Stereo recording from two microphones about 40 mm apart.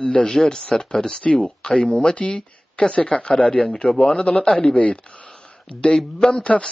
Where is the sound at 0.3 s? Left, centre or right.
Centre; by 3.6 s left.